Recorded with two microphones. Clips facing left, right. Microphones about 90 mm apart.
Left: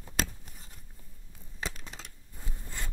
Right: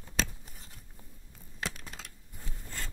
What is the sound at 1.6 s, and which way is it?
Typing, centre (ahead or behind).